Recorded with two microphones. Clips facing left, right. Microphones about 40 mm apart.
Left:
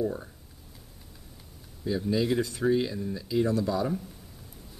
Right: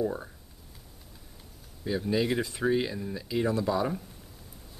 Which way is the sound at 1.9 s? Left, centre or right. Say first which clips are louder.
Left 1 dB; centre.